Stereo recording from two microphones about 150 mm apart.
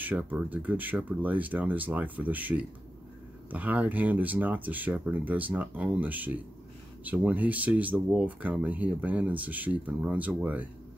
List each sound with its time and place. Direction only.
0.0 s speech: 10° right (ahead or behind)